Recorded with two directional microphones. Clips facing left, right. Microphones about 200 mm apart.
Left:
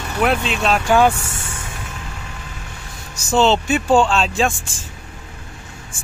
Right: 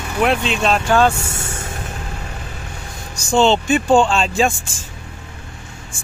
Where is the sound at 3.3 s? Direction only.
5° left (ahead or behind).